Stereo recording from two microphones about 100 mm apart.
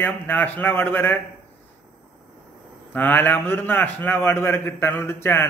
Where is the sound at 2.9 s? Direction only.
20° left (ahead or behind).